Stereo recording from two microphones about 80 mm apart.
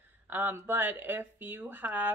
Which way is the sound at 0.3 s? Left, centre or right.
Right.